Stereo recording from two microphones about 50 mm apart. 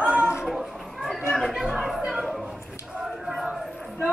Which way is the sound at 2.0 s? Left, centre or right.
Centre.